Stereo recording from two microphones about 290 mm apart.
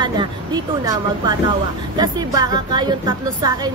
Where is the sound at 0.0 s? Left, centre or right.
Centre.